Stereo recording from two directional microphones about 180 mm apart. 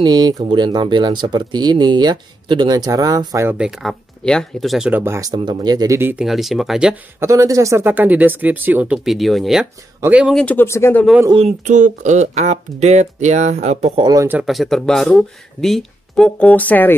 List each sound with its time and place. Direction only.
0.0 s speech: 25° right (ahead or behind)
3.4 s speech: 5° right (ahead or behind)
6.2 s speech: centre (ahead or behind)
7.2 s speech: 15° right (ahead or behind)
10.3 s speech: 10° left (ahead or behind)
11.2 s speech: 35° right (ahead or behind)
14.0 s speech: 15° right (ahead or behind)
14.4 s speech: centre (ahead or behind)